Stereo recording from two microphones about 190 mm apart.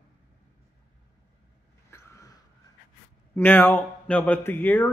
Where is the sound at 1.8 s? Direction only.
15° left (ahead or behind).